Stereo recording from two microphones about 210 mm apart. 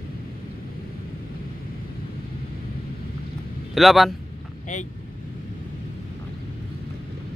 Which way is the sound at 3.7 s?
Centre (ahead or behind).